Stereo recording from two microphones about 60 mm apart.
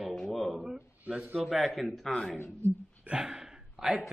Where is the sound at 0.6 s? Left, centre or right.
Right.